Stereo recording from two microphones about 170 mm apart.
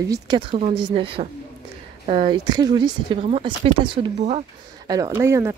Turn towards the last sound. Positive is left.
turn(degrees=-15)  # may be behind; listen again after turning